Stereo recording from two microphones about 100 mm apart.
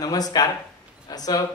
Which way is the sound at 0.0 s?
40° left (ahead or behind).